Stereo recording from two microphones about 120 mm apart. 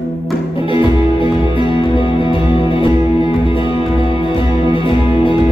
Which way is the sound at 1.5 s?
45° left (ahead or behind).